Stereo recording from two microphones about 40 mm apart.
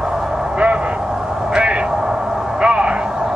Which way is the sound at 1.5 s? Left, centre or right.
Right.